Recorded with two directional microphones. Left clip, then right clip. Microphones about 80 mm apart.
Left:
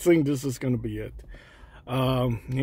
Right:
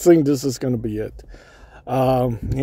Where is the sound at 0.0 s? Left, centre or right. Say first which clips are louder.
Right 7 dB; right.